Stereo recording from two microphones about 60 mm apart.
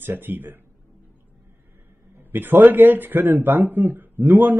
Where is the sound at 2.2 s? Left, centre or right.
Right.